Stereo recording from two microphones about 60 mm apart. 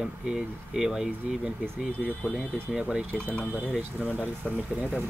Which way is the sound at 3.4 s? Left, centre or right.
Left.